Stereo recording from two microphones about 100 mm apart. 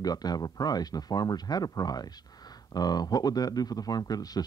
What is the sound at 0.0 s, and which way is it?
Speech, 40° left (ahead or behind).